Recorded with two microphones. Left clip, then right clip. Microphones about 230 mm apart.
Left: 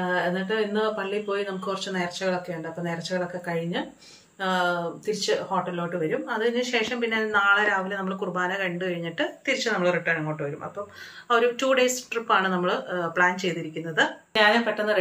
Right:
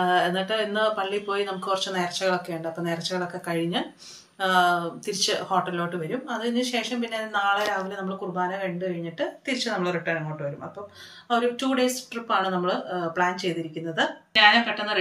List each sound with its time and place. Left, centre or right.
0.1 s speech: centre
11.2 s speech: centre
14.3 s speech: centre